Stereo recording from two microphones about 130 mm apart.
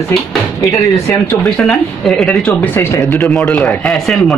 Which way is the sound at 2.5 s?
15° left (ahead or behind).